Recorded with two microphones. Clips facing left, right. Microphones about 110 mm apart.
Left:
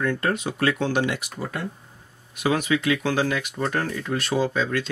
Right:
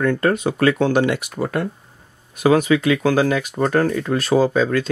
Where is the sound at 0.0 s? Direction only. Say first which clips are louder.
Right 6 dB; 50° right (ahead or behind).